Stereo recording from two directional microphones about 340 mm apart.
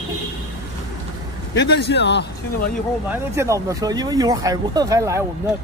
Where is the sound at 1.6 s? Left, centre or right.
Left.